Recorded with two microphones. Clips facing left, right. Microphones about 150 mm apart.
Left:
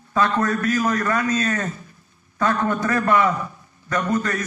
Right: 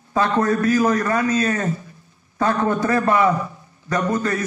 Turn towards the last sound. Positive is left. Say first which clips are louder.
# right 1 dB
turn(degrees=-30)  # may be behind; listen again after turning